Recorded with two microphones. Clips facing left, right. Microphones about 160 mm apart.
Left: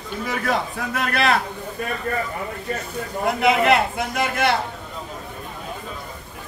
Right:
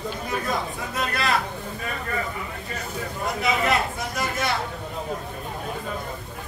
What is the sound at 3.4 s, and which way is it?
A man's voice, 65° left (ahead or behind).